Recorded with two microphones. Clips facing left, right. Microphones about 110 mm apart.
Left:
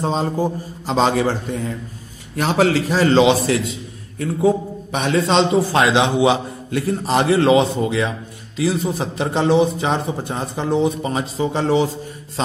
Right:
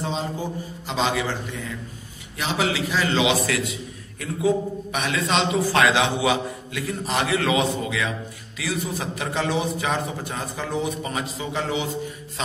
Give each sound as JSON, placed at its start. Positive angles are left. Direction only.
{"t": 0.0, "sound": "a man's voice", "side_deg": 40}